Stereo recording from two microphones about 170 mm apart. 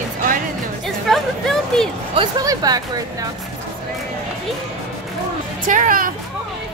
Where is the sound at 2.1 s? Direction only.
20° right (ahead or behind).